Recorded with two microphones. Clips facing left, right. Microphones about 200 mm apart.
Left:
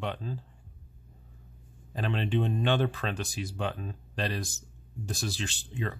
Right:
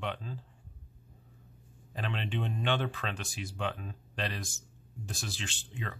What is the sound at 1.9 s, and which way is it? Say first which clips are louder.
Speech: left 6 dB; 40° left (ahead or behind).